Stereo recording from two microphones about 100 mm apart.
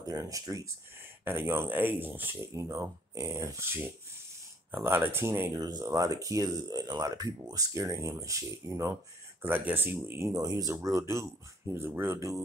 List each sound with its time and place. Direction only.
0.1 s speech: 35° right (ahead or behind)
1.2 s speech: 20° right (ahead or behind)
2.5 s speech: 30° right (ahead or behind)
4.8 s speech: 25° right (ahead or behind)
5.6 s speech: 40° right (ahead or behind)
9.4 s speech: 20° right (ahead or behind)